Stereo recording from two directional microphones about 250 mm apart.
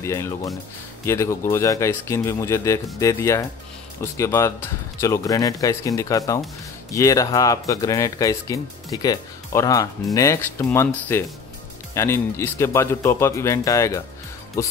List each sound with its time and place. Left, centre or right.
0.0 s speech: centre